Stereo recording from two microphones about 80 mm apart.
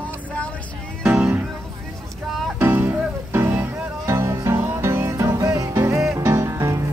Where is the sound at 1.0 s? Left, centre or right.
Centre.